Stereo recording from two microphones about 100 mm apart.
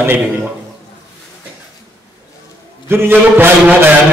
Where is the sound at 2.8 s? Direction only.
25° right (ahead or behind).